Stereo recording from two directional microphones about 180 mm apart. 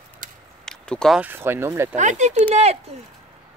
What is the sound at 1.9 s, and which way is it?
Speech, 40° right (ahead or behind).